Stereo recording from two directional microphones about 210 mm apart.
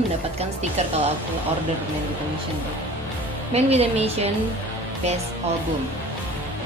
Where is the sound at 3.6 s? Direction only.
30° right (ahead or behind).